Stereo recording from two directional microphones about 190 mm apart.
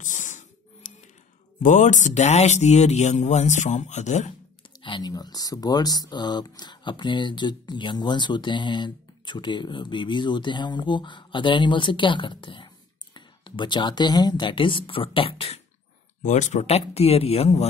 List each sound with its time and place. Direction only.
0.0 s a sound: 40° left (ahead or behind)
1.6 s speech: 40° left (ahead or behind)
4.8 s speech: 25° left (ahead or behind)